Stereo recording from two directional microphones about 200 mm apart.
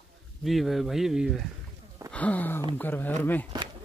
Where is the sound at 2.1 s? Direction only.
5° left (ahead or behind).